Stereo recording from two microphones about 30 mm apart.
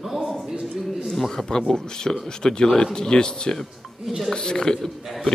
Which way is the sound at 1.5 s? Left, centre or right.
Left.